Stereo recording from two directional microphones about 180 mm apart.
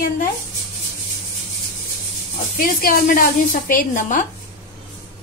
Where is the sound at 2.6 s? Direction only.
55° left (ahead or behind).